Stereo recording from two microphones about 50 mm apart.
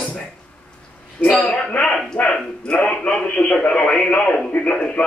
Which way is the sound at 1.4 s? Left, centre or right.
Centre.